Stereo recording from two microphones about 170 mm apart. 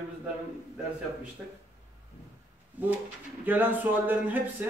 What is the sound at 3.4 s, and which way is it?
Speech, 10° right (ahead or behind).